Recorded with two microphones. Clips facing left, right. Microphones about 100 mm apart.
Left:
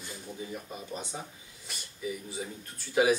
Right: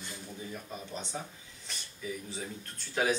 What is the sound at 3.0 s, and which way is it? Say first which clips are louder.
Speech: left 5 dB; 10° left (ahead or behind).